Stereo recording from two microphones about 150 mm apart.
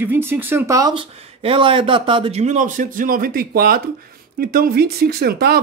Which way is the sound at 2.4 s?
55° right (ahead or behind).